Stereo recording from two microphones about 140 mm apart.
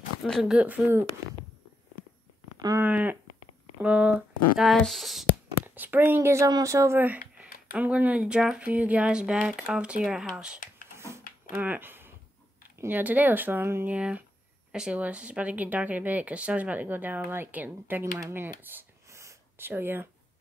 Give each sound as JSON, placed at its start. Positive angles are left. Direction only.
{"t": 0.2, "sound": "speech", "side_deg": 0}
{"t": 2.8, "sound": "speech", "side_deg": -10}
{"t": 5.8, "sound": "speech", "side_deg": -15}
{"t": 18.6, "sound": "a sound", "side_deg": -15}